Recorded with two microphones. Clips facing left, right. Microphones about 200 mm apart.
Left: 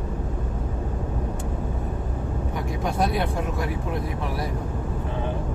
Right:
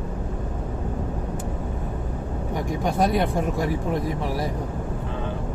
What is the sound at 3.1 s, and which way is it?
Speech, 45° right (ahead or behind).